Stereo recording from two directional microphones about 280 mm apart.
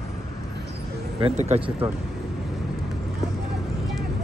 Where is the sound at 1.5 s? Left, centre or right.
Right.